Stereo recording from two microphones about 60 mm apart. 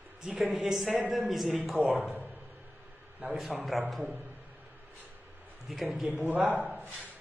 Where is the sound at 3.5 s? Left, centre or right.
Centre.